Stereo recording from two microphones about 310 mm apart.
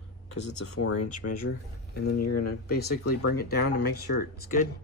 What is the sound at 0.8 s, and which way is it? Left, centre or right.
Speech, left.